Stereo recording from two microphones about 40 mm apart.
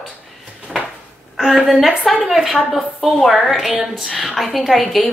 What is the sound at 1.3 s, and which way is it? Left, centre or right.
A woman's voice, centre.